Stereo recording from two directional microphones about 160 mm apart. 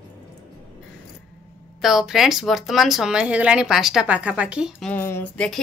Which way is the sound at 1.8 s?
Centre (ahead or behind).